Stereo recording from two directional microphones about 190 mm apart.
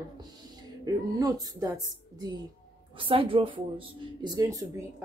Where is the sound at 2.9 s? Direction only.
30° right (ahead or behind).